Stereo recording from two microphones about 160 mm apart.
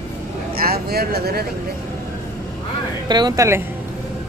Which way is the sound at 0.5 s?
70° right (ahead or behind).